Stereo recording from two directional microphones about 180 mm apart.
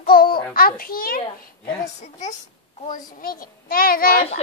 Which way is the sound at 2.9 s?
50° left (ahead or behind).